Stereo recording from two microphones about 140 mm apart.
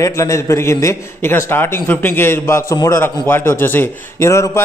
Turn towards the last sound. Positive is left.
turn(degrees=20)  # may be behind; listen again after turning